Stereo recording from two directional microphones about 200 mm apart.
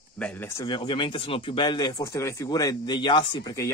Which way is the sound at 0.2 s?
10° left (ahead or behind).